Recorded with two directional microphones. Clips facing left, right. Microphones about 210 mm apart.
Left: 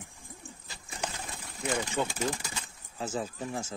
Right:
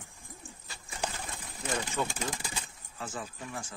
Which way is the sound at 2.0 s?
20° left (ahead or behind).